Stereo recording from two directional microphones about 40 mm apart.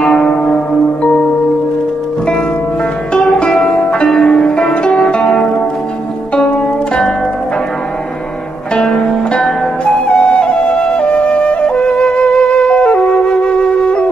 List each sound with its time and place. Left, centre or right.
0.0 s a sound: left
3.3 s music: left
3.6 s zither: left
8.7 s music: left
9.0 s flute: centre